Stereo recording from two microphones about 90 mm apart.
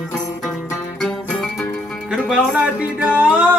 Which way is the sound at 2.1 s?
15° right (ahead or behind).